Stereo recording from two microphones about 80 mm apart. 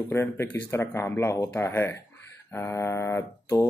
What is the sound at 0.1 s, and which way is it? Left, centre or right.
Speech, left.